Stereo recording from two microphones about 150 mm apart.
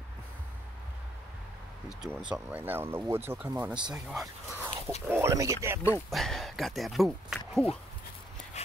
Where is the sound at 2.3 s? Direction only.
10° right (ahead or behind).